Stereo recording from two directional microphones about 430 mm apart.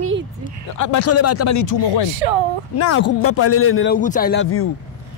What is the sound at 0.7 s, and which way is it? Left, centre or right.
Speech, left.